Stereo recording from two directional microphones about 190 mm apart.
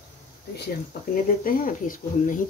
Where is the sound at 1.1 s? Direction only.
45° left (ahead or behind).